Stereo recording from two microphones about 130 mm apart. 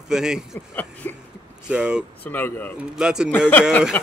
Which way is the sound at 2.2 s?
15° left (ahead or behind).